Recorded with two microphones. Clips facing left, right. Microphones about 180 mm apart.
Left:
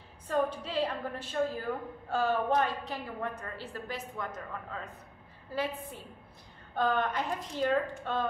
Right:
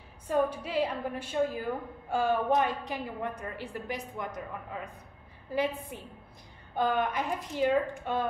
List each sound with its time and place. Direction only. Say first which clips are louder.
0.3 s a woman's voice: right 2 dB; 10° right (ahead or behind)